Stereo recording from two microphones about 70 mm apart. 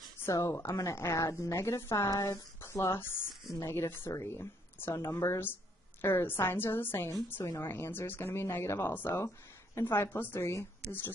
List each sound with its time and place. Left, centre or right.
0.3 s speech: left
2.0 s a woman's voice: left